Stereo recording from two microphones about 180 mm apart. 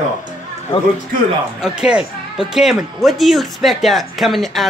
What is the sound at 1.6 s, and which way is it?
Speech, 5° right (ahead or behind).